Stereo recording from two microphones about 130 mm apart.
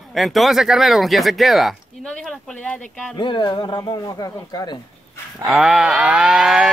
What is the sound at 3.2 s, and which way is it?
Speech, 35° left (ahead or behind).